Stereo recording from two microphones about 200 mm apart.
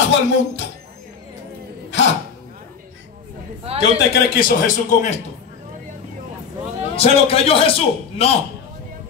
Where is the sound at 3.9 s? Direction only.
50° left (ahead or behind).